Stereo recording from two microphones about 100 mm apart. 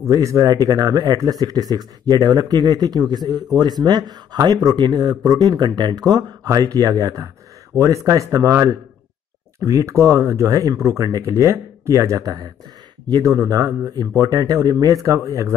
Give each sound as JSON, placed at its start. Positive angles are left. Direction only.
{"t": 0.0, "sound": "speech", "side_deg": -30}